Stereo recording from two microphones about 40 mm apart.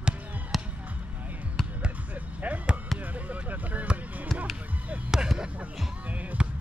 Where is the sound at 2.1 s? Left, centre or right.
Right.